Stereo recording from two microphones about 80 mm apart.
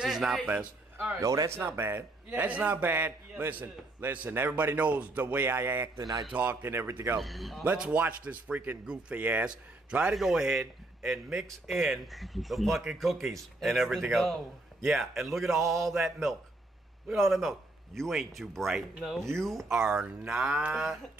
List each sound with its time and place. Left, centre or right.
0.0 s speech: centre
0.5 s a man's voice: centre
1.2 s speech: right
1.7 s a man's voice: right
5.9 s speech: right
6.3 s a man's voice: right
7.2 s speech: centre
7.7 s speech: centre
19.7 s speech: centre